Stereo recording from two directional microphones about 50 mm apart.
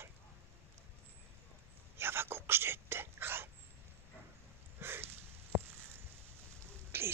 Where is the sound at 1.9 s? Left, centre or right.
Right.